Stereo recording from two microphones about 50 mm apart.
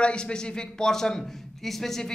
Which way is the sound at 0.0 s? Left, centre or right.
Centre.